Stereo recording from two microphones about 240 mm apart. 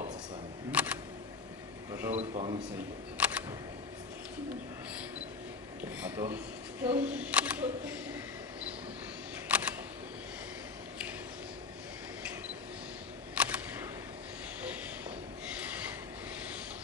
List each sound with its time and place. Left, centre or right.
0.7 s camera: centre
1.9 s a sound: centre
2.1 s a man's voice: right
3.2 s single-lens reflex camera: centre
6.0 s speech: centre
9.5 s single-lens reflex camera: centre
13.3 s single-lens reflex camera: centre